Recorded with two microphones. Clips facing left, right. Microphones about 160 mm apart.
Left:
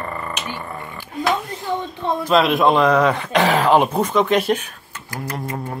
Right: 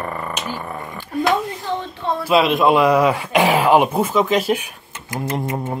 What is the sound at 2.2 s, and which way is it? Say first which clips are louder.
Speech: right 1 dB; 5° right (ahead or behind).